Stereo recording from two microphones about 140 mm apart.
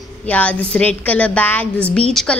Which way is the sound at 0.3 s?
10° left (ahead or behind).